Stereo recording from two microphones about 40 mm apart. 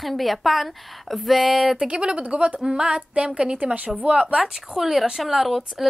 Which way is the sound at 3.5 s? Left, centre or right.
Right.